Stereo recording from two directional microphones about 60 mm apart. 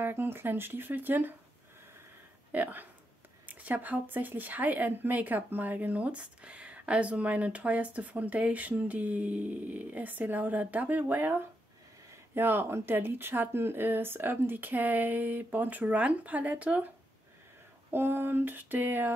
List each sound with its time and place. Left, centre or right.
0.0 s speech: right
2.5 s speech: right
17.9 s speech: right